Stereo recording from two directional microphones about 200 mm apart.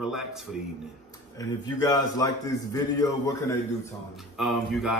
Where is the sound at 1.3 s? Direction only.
20° left (ahead or behind).